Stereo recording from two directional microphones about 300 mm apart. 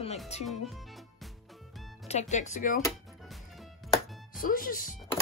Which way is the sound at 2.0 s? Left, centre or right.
Left.